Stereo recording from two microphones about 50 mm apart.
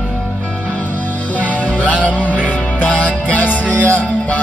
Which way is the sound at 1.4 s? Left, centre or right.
Left.